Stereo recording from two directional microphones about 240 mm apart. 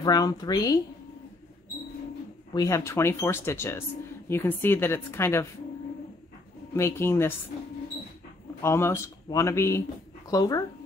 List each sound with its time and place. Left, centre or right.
0.0 s speech: centre
2.5 s speech: centre
6.7 s speech: centre
8.6 s speech: centre